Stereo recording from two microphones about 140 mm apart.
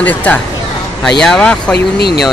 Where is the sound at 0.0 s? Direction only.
10° left (ahead or behind).